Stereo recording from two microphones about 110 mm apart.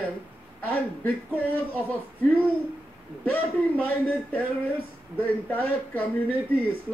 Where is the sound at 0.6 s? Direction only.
15° left (ahead or behind).